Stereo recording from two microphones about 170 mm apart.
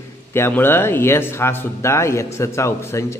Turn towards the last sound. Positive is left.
turn(degrees=15)  # may be behind; listen again after turning